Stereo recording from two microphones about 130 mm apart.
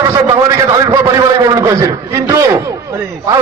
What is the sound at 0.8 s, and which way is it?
Speech, 25° right (ahead or behind).